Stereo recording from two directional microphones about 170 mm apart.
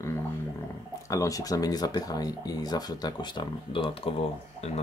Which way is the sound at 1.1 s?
20° left (ahead or behind).